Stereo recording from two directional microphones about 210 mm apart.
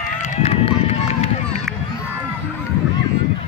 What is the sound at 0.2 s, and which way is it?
Run, 35° left (ahead or behind).